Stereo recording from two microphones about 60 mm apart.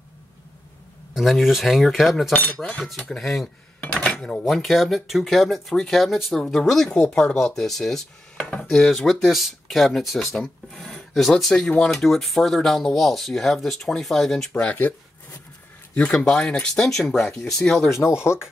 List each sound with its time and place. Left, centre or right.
1.1 s speech: centre
2.3 s speech: left
2.8 s speech: centre
3.8 s dishes: left
4.2 s speech: centre
7.1 s speech: centre
7.3 s speech: centre
14.5 s speech: left
15.9 s speech: left
16.3 s speech: centre
17.8 s speech: left